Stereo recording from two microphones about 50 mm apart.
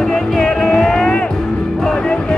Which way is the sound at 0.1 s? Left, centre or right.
Centre.